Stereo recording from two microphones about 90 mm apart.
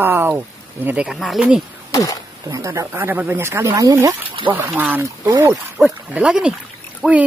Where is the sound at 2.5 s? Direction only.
35° right (ahead or behind).